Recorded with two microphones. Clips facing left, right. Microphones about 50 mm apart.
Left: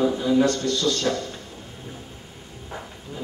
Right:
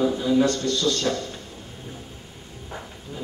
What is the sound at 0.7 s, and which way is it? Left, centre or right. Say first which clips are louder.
Speech: even; left.